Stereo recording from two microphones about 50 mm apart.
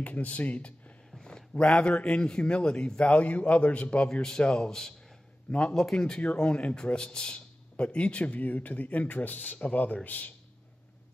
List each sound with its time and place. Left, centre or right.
0.0 s a man's voice: left
4.1 s a man's voice: centre; by 10.3 s left